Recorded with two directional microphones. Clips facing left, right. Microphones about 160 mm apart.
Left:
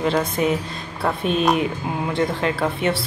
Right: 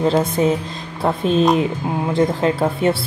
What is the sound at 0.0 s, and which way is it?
Speech, 30° right (ahead or behind).